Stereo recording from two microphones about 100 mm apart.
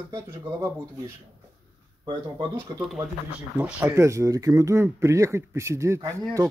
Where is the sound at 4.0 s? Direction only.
30° right (ahead or behind).